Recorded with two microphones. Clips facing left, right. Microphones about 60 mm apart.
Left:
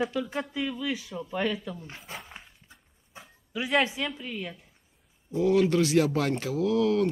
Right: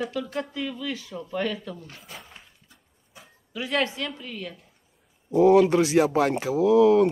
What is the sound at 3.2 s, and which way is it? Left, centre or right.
Speech, centre.